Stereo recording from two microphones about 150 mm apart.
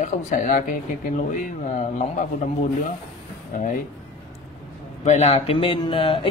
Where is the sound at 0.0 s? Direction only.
60° left (ahead or behind).